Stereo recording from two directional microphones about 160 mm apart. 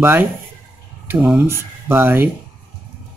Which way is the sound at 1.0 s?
10° right (ahead or behind).